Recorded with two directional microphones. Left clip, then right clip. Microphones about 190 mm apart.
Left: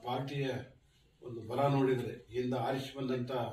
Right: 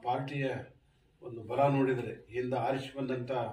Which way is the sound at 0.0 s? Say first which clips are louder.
Right 4 dB; 20° right (ahead or behind).